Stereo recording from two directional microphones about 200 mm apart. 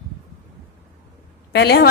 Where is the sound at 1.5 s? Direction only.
55° left (ahead or behind).